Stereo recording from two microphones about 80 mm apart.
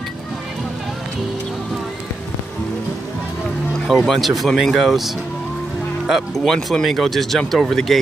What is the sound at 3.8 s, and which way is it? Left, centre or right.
Speech, centre.